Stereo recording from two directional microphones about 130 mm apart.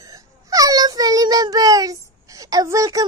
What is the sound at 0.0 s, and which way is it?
A child's voice, 25° right (ahead or behind).